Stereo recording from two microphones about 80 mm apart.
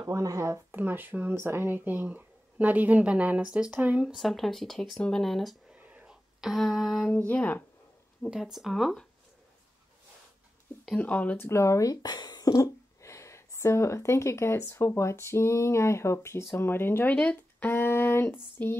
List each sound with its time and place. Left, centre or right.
0.0 s speech: right
0.7 s speech: right
4.0 s speech: centre
5.7 s whispering: centre
6.0 s speech: centre
7.1 s a sound: centre
8.3 s speech: centre
11.0 s a sound: centre
11.4 s speech: left
16.5 s a sound: left